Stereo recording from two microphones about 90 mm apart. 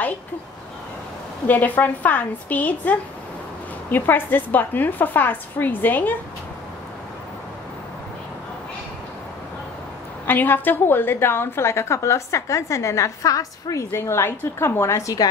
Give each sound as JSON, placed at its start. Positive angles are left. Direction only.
{"t": 1.5, "sound": "a woman's voice", "side_deg": 20}
{"t": 10.2, "sound": "a woman's voice", "side_deg": 20}